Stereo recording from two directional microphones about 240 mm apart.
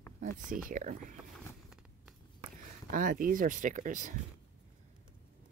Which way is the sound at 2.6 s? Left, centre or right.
Right.